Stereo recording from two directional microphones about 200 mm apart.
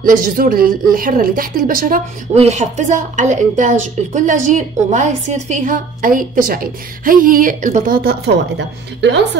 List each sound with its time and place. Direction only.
0.0 s a woman's voice: 45° right (ahead or behind)
2.3 s speech: 35° right (ahead or behind); by 9.4 s 60° right (ahead or behind)